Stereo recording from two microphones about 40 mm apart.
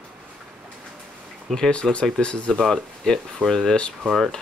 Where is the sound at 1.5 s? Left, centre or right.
Centre.